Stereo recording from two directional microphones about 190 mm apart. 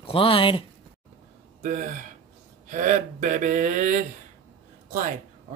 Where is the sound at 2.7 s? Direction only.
40° right (ahead or behind).